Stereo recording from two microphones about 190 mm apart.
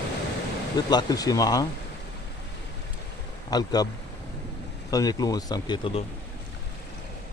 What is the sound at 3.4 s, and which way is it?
Speech, 20° left (ahead or behind).